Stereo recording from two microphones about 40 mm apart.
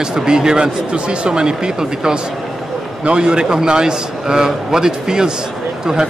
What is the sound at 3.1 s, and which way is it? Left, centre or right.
Speech, right.